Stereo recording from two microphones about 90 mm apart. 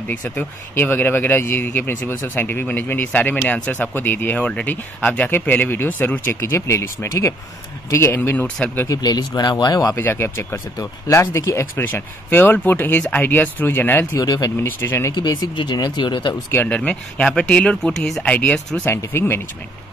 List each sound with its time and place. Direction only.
0.1 s speech: 20° left (ahead or behind)
6.5 s speech: 30° left (ahead or behind)
8.8 s speech: 45° left (ahead or behind)
9.9 s speech: 25° left (ahead or behind)
11.8 s speech: 20° left (ahead or behind)
14.1 s speech: 40° left (ahead or behind)
14.6 s speech: 25° left (ahead or behind)
15.1 s speech: 50° left (ahead or behind)
16.4 s speech: 20° left (ahead or behind)
18.9 s speech: 25° left (ahead or behind)